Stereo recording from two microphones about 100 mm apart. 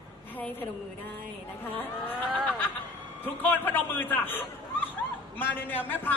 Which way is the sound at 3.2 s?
20° left (ahead or behind).